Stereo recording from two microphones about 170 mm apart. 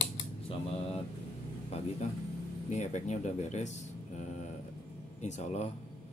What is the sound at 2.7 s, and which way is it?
Speech, 45° left (ahead or behind).